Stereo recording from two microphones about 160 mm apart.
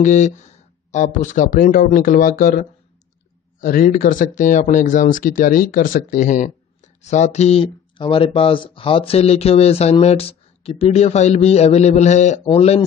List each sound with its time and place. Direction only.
0.0 s speech: 50° left (ahead or behind)
3.6 s speech: 60° left (ahead or behind); by 12.8 s 40° left (ahead or behind)